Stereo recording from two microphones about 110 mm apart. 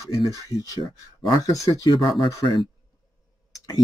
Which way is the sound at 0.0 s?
30° left (ahead or behind).